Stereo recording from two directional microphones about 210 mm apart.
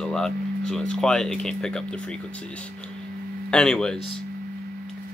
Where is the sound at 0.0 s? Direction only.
5° left (ahead or behind).